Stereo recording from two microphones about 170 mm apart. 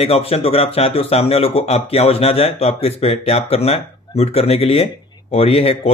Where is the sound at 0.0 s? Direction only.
35° left (ahead or behind).